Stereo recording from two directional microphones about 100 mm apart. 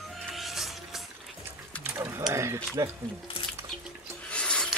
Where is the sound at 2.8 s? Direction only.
35° right (ahead or behind).